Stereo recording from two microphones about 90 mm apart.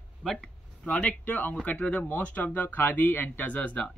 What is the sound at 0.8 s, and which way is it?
Speech, 15° left (ahead or behind).